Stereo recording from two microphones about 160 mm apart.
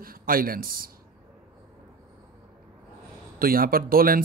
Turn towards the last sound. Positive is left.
turn(degrees=-65)  # may be behind; listen again after turning